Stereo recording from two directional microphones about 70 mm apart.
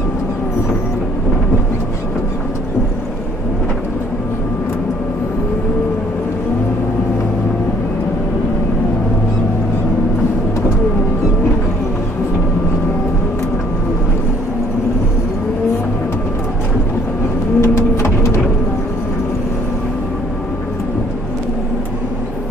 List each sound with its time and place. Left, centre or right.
17.6 s vehicle: left